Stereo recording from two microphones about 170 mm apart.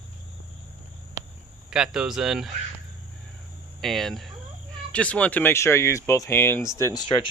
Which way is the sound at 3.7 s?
Centre (ahead or behind).